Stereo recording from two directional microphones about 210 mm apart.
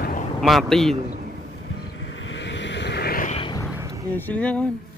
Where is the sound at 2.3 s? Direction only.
60° left (ahead or behind); by 3.3 s 40° left (ahead or behind).